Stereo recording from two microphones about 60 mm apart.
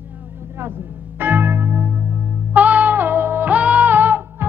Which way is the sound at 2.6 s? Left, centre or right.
Right.